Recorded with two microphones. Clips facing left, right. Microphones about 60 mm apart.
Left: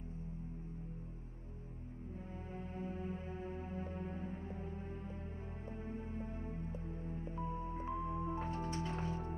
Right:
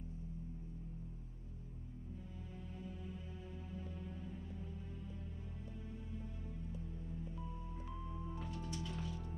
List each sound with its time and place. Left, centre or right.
2.8 s music: left
5.9 s music: left